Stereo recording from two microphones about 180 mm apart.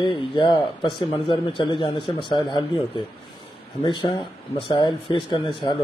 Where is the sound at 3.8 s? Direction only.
30° left (ahead or behind).